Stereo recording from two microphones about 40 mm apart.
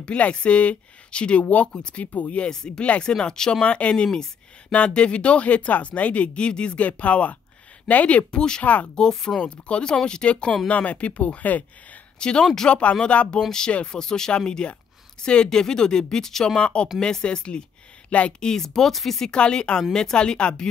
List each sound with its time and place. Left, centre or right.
0.0 s speech: left
2.5 s speech: centre
2.8 s speech: left
4.7 s speech: left
8.3 s speech: left
8.6 s speech: left
9.4 s speech: left
12.2 s speech: left
13.5 s speech: centre
16.5 s speech: left
18.4 s speech: centre
19.3 s speech: left